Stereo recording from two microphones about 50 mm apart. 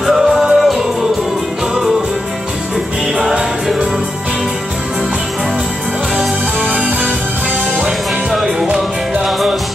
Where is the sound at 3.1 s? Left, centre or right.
Centre.